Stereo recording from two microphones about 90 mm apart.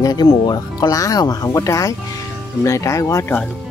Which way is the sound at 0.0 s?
45° left (ahead or behind).